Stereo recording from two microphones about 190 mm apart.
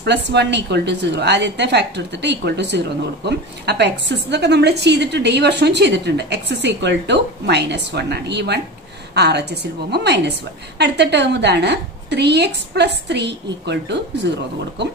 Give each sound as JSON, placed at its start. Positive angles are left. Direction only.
{"t": 0.0, "sound": "a woman's voice", "side_deg": -65}